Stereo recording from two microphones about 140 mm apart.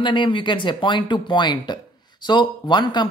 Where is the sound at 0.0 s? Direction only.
35° left (ahead or behind).